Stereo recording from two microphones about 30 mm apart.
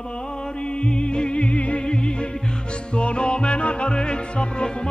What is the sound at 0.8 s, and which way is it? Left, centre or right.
Music, left.